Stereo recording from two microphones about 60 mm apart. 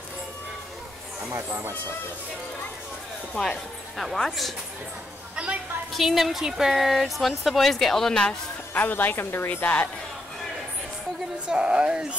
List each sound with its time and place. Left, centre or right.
3.3 s speech: centre
5.3 s a sound: right
5.9 s speech: centre
8.7 s a woman's voice: left
11.4 s speech: centre